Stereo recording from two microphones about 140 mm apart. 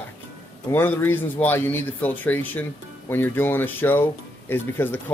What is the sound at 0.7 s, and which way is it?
Speech, 15° left (ahead or behind).